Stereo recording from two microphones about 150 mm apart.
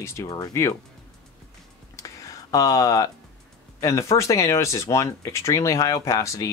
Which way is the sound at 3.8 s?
20° left (ahead or behind).